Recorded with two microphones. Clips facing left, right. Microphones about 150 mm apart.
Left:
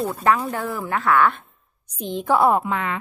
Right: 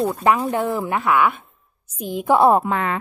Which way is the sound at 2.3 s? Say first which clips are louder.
Right 3 dB; 25° right (ahead or behind).